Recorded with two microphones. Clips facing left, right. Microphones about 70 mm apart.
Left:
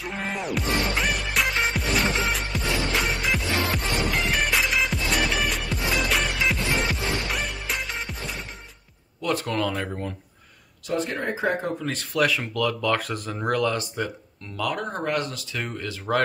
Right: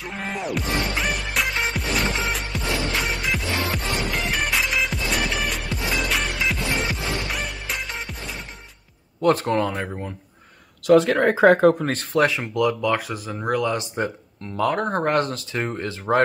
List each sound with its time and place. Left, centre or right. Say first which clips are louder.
0.0 s music: right 1 dB; centre
9.2 s speech: right 6 dB; right
9.8 s speech: even; centre
10.9 s speech: right 11 dB; right
11.8 s speech: right 4 dB; right; by 13.7 s centre
13.7 s speech: right 2 dB; right
14.6 s speech: right 6 dB; right